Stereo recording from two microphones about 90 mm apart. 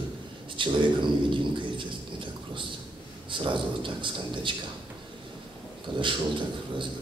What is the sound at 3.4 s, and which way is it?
A man's voice, 65° right (ahead or behind).